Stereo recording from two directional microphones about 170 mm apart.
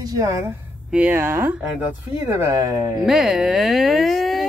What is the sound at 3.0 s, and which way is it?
Speech, centre (ahead or behind).